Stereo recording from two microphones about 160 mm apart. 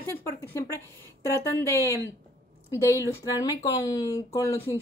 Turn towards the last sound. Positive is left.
turn(degrees=20)  # may be behind; listen again after turning